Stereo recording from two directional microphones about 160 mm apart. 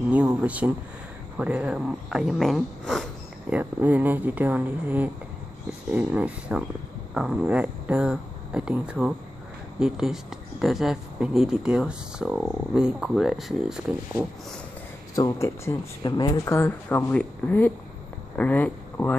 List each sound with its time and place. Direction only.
0.1 s speech: 10° right (ahead or behind)
15.1 s speech: 20° left (ahead or behind)